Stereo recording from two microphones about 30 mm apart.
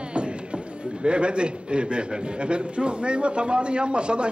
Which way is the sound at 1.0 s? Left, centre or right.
Right.